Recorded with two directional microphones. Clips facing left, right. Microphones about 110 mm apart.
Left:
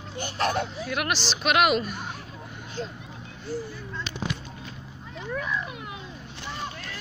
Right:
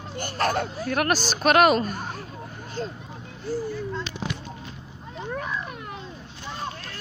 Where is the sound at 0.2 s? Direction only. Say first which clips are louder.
Right 1 dB; 45° right (ahead or behind).